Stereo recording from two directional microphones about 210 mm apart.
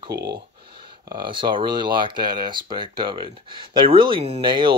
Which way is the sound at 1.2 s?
25° right (ahead or behind).